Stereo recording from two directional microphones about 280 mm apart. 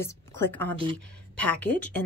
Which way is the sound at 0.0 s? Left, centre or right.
Centre.